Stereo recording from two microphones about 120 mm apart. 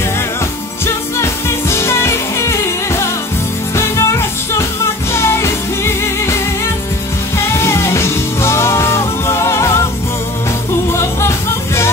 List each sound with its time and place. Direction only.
0.8 s music: 20° left (ahead or behind)
10.9 s music: 25° left (ahead or behind)